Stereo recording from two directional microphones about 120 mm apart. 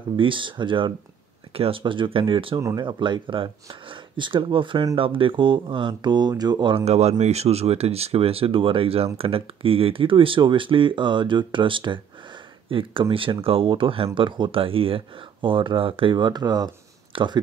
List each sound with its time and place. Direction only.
0.1 s speech: 45° right (ahead or behind)
6.8 s speech: 65° right (ahead or behind); by 17.4 s 40° right (ahead or behind)